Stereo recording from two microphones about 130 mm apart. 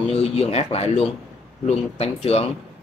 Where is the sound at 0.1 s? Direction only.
50° left (ahead or behind).